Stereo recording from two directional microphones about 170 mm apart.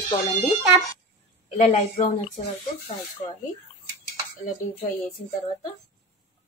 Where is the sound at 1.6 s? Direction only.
45° left (ahead or behind).